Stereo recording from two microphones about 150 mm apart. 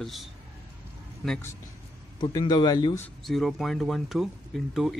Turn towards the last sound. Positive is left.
turn(degrees=0)  # may be behind; listen again after turning